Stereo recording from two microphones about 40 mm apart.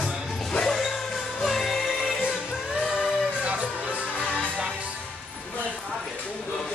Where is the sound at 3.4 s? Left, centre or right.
Right.